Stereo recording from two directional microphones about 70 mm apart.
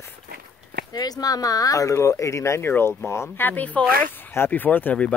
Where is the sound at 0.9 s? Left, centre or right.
Left.